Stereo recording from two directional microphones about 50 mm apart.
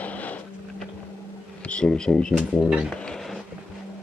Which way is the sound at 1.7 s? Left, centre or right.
Centre.